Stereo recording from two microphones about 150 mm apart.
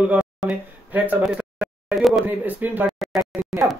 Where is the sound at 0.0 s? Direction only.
5° right (ahead or behind).